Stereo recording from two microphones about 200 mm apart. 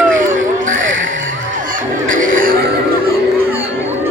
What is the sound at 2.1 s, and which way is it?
Music, 40° right (ahead or behind).